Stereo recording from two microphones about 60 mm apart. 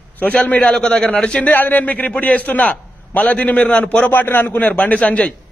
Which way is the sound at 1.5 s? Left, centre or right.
Left.